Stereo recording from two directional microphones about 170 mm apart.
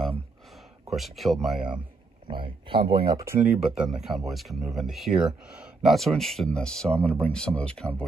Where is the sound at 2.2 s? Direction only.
30° right (ahead or behind).